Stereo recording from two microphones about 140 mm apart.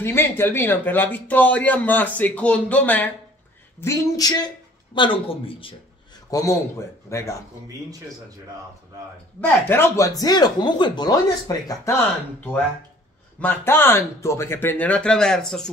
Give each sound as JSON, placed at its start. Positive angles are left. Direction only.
{"t": 0.0, "sound": "speech", "side_deg": 15}
{"t": 4.9, "sound": "speech", "side_deg": 35}
{"t": 6.3, "sound": "speech", "side_deg": 25}
{"t": 9.4, "sound": "speech", "side_deg": 15}
{"t": 13.4, "sound": "speech", "side_deg": 15}